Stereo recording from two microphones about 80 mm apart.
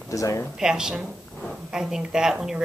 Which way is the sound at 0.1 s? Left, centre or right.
Left.